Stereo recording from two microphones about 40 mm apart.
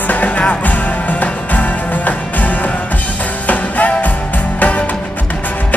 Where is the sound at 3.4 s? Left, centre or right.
Left.